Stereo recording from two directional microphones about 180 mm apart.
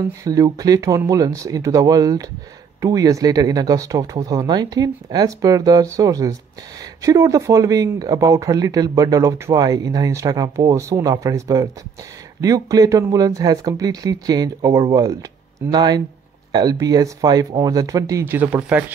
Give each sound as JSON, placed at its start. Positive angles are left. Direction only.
{"t": 0.2, "sound": "speech", "side_deg": -20}